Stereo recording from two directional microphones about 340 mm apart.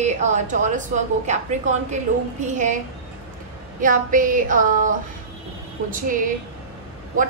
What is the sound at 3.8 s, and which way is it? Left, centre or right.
A woman's voice, right.